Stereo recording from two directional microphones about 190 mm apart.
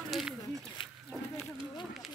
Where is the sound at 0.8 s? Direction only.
25° left (ahead or behind).